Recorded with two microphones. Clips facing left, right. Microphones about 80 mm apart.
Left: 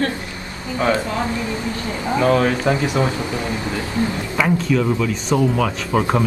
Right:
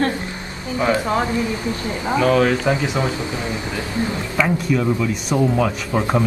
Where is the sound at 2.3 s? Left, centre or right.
Centre.